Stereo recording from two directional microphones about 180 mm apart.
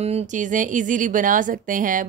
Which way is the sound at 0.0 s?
40° right (ahead or behind).